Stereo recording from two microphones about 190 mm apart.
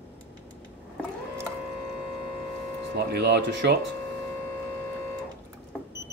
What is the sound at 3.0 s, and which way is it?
Speech, 60° right (ahead or behind).